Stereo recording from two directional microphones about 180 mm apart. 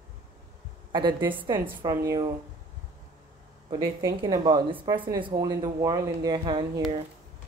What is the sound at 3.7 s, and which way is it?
Speech, 20° right (ahead or behind).